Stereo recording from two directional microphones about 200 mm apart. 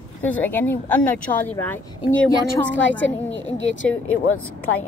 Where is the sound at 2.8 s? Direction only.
70° left (ahead or behind).